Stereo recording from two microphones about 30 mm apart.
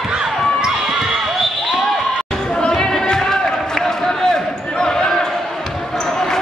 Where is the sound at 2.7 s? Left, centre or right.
Centre.